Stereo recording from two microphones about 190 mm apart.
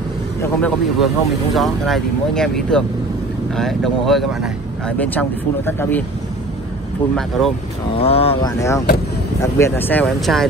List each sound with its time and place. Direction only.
0.4 s speech: 5° left (ahead or behind)
7.2 s speech: centre (ahead or behind)
7.9 s speech: 30° left (ahead or behind)
8.5 s speech: 15° left (ahead or behind)